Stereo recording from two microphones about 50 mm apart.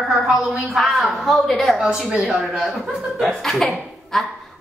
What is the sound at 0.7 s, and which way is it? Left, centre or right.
A woman's voice, centre.